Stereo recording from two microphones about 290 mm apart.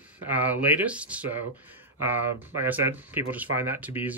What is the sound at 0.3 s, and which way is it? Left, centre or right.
Speech, centre.